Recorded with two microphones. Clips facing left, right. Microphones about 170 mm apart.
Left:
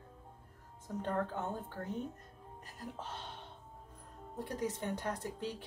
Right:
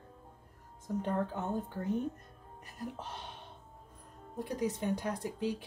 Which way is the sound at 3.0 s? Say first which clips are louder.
Right 1 dB; 15° right (ahead or behind).